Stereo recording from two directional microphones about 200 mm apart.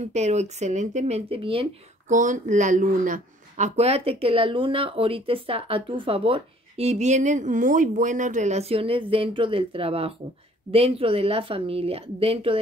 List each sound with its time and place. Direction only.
0.1 s speech: 35° right (ahead or behind)
2.1 s speech: 40° right (ahead or behind)